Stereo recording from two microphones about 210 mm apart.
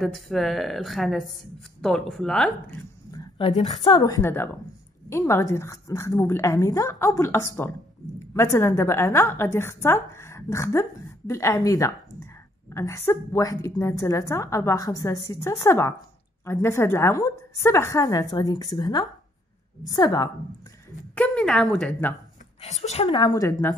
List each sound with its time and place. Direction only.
0.0 s a woman's voice: centre (ahead or behind)
3.1 s a sound: 20° left (ahead or behind)
3.8 s a woman's voice: 20° left (ahead or behind)
21.1 s a woman's voice: 5° left (ahead or behind)
22.6 s speech: 30° left (ahead or behind)
23.0 s speech: 20° left (ahead or behind)